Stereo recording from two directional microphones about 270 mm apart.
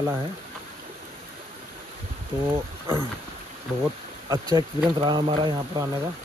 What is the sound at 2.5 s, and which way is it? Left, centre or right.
Speech, centre.